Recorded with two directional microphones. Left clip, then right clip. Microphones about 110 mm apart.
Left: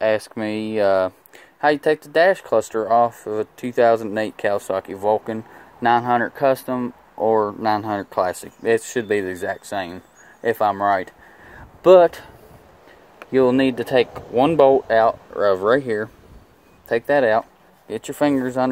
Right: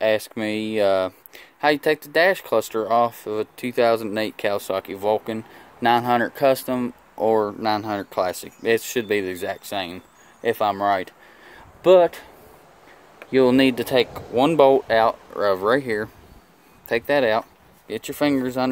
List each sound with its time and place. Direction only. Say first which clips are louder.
0.0 s speech: left 1 dB; 15° right (ahead or behind)
5.8 s speech: left 1 dB; 35° right (ahead or behind)
7.2 s speech: left 2 dB; 25° right (ahead or behind)
7.4 s speech: left 2 dB; 10° right (ahead or behind)
11.8 s speech: left 3 dB; 5° right (ahead or behind)
13.5 s speech: even; 50° right (ahead or behind)
13.9 s speech: left 5 dB; 15° right (ahead or behind)
15.4 s speech: left 3 dB; 5° right (ahead or behind)